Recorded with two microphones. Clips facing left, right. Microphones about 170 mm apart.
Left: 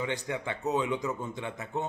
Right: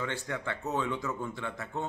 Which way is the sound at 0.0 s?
15° left (ahead or behind).